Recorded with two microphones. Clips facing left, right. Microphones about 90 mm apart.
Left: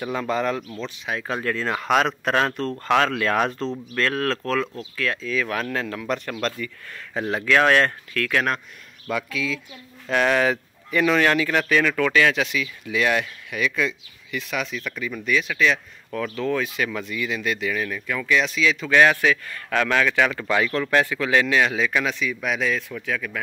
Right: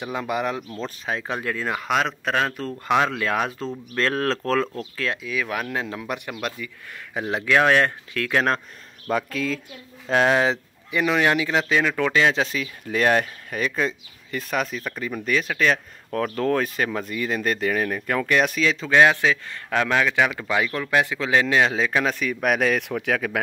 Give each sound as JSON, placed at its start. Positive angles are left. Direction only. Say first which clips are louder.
{"t": 0.0, "sound": "a man's voice", "louder": "left 2 dB", "side_deg": -15}
{"t": 0.7, "sound": "speech", "louder": "right 1 dB", "side_deg": -35}
{"t": 1.2, "sound": "a man's voice", "louder": "left 4 dB", "side_deg": -15}
{"t": 3.9, "sound": "speech", "louder": "right 2 dB", "side_deg": -30}
{"t": 5.1, "sound": "a man's voice", "louder": "left 2 dB", "side_deg": -15}
{"t": 9.1, "sound": "speech", "louder": "right 2 dB", "side_deg": -45}
{"t": 10.0, "sound": "a man's voice", "louder": "right 1 dB", "side_deg": -30}
{"t": 12.4, "sound": "a man's voice", "louder": "left 1 dB", "side_deg": -40}
{"t": 22.1, "sound": "speech", "louder": "right 3 dB", "side_deg": -45}